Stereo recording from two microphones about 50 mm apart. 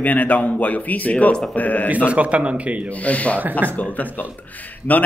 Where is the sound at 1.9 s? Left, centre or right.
Right.